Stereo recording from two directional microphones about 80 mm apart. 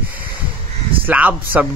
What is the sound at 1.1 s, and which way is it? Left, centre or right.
Speech, centre.